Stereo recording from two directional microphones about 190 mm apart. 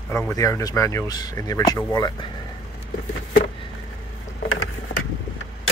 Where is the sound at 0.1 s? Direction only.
15° left (ahead or behind).